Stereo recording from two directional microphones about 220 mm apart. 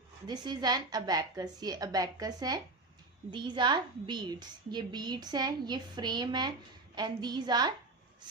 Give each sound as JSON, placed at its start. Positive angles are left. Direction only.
{"t": 0.3, "sound": "a woman's voice", "side_deg": -20}